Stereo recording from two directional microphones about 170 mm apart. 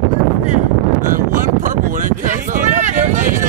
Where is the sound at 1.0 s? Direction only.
50° right (ahead or behind).